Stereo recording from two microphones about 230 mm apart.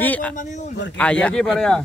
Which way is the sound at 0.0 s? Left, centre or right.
Centre.